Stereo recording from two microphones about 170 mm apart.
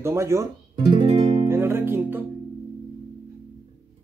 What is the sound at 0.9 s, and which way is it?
Music, 30° right (ahead or behind).